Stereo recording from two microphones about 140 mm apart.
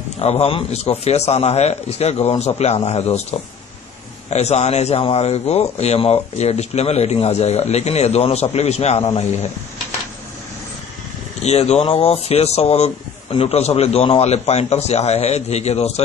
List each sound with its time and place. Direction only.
0.2 s speech: 50° left (ahead or behind)
11.4 s speech: 50° left (ahead or behind)